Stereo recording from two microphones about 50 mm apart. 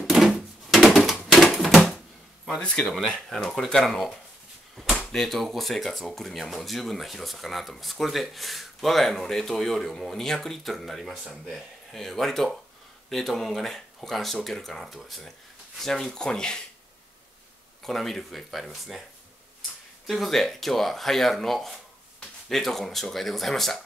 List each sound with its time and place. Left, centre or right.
0.0 s a sound: centre
1.2 s typewriter: centre
2.6 s speech: centre
11.5 s speech: centre
17.8 s speech: centre
20.1 s speech: centre